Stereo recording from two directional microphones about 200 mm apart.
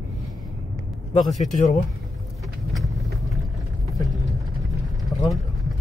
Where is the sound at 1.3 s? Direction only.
35° left (ahead or behind).